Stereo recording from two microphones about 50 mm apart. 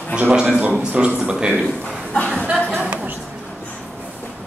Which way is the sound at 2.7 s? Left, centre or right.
Right.